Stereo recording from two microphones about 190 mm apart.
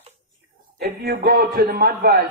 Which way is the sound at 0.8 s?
55° right (ahead or behind).